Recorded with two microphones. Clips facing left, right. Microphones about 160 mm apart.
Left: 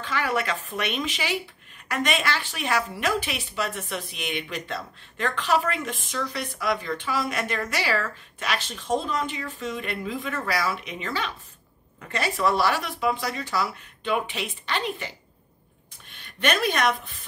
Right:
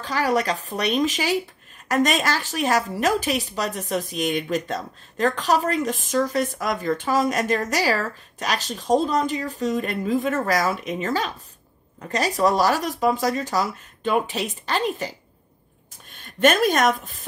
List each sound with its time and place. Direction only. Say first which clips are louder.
0.0 s a woman's voice: right 5 dB; 40° right (ahead or behind)
16.1 s a woman's voice: right 7 dB; 45° right (ahead or behind)